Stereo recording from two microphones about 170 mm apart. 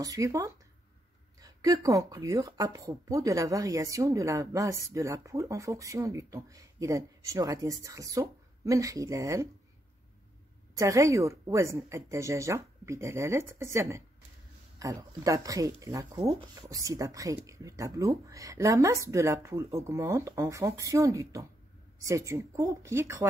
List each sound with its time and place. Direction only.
0.0 s speech: 20° right (ahead or behind)
10.8 s speech: 20° right (ahead or behind)